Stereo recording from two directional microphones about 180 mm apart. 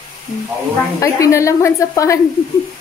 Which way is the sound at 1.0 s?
15° left (ahead or behind).